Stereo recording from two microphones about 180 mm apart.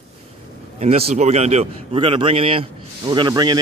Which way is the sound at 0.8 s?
35° right (ahead or behind).